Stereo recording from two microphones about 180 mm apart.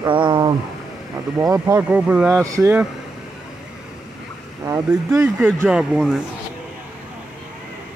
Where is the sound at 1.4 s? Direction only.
15° right (ahead or behind).